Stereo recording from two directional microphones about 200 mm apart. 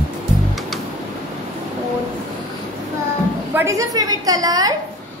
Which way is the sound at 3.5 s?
15° right (ahead or behind).